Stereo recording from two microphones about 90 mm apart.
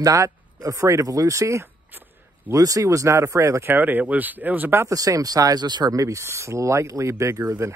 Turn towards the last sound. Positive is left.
turn(degrees=-35)  # may be behind; listen again after turning